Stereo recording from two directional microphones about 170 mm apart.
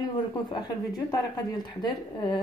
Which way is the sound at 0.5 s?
25° left (ahead or behind).